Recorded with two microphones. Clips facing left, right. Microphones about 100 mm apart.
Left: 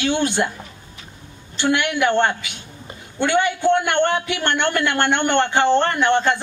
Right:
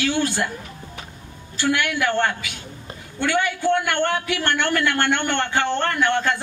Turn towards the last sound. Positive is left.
turn(degrees=20)  # may be behind; listen again after turning